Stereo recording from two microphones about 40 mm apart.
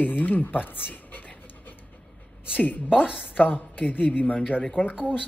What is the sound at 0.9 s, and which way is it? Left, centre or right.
Pant, left.